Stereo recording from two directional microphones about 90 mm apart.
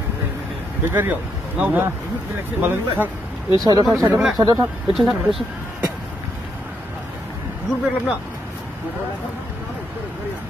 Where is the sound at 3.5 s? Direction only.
50° right (ahead or behind).